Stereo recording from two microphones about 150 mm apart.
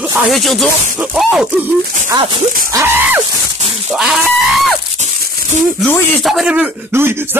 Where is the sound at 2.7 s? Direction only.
20° right (ahead or behind).